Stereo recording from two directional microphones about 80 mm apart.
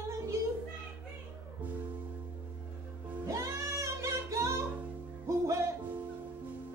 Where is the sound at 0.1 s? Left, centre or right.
Right.